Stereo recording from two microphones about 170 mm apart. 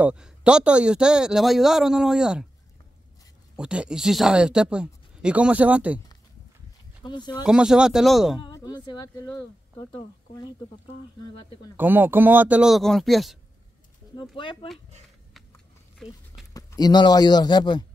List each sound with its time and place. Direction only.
0.0 s a man's voice: 5° right (ahead or behind)
3.5 s a man's voice: 5° right (ahead or behind)
7.0 s a man's voice: 25° left (ahead or behind)
7.4 s a man's voice: 5° right (ahead or behind)
8.4 s speech: 25° left (ahead or behind)
11.7 s speech: 10° right (ahead or behind)
14.3 s a man's voice: 30° left (ahead or behind)
16.5 s a man's voice: 25° left (ahead or behind)